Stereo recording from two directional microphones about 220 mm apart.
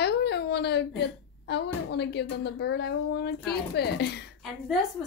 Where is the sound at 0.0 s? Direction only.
50° left (ahead or behind).